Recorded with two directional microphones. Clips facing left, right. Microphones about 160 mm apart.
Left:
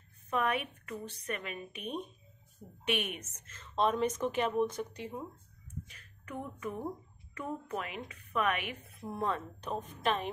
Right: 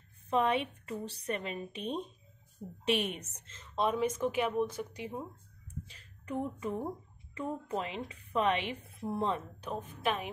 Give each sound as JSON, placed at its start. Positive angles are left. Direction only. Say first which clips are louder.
{"t": 0.3, "sound": "a woman's voice", "louder": "right 3 dB", "side_deg": -25}
{"t": 3.7, "sound": "speech", "louder": "left 1 dB", "side_deg": -10}
{"t": 5.9, "sound": "a woman's voice", "louder": "right 5 dB", "side_deg": -30}
{"t": 9.6, "sound": "speech", "louder": "left 1 dB", "side_deg": -5}